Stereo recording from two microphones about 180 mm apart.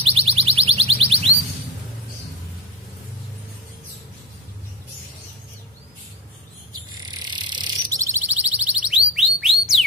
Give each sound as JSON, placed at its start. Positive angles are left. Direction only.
{"t": 0.0, "sound": "alarm", "side_deg": -30}
{"t": 6.9, "sound": "bird", "side_deg": -20}